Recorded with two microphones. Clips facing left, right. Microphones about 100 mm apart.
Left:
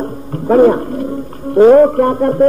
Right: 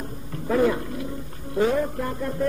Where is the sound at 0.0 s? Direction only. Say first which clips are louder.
Left 12 dB; 50° left (ahead or behind).